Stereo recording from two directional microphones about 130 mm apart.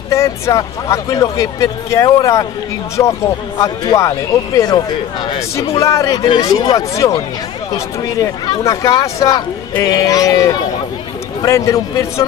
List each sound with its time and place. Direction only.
0.1 s speech: 25° left (ahead or behind)
3.5 s speech: 30° left (ahead or behind)
5.7 s speech: 25° left (ahead or behind)
6.2 s speech: 40° left (ahead or behind)
6.5 s speech: 30° left (ahead or behind)